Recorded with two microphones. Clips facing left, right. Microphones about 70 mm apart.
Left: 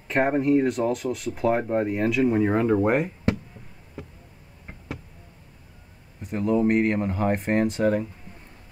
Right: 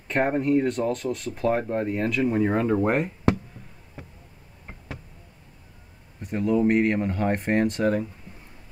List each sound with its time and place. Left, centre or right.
0.1 s speech: centre
6.5 s speech: centre